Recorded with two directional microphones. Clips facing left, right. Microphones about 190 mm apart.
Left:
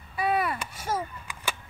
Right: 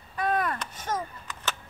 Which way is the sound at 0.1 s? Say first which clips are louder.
Left 1 dB; 10° left (ahead or behind).